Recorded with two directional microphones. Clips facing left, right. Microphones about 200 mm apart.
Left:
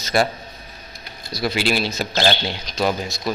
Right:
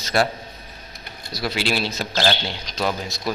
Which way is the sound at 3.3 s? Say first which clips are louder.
Left 1 dB; 5° right (ahead or behind).